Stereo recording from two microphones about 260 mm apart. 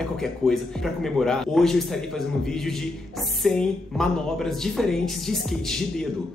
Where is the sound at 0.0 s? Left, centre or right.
Centre.